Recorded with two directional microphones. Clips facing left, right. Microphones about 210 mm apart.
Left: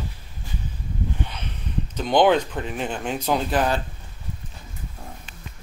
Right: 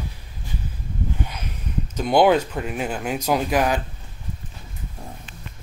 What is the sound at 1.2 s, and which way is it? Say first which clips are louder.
Speech: right 1 dB; 10° right (ahead or behind).